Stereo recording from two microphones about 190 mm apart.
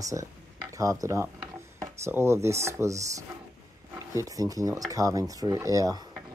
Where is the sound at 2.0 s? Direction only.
15° right (ahead or behind).